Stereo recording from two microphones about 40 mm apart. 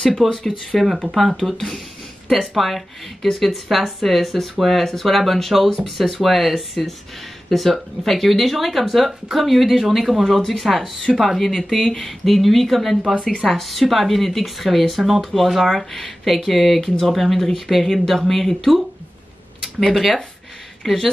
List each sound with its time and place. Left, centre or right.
0.0 s speech: centre
19.9 s speech: centre